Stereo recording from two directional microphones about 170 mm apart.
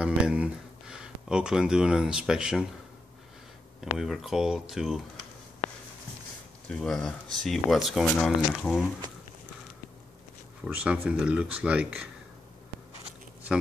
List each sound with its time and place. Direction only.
0.0 s speech: 5° right (ahead or behind)
4.0 s speech: centre (ahead or behind)
6.7 s speech: 5° left (ahead or behind)
10.6 s speech: 5° right (ahead or behind)